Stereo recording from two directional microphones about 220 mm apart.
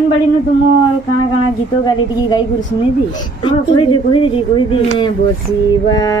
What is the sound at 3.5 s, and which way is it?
Speech, 25° left (ahead or behind).